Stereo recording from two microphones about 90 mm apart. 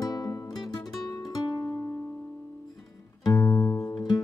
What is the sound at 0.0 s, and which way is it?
Music, 45° left (ahead or behind).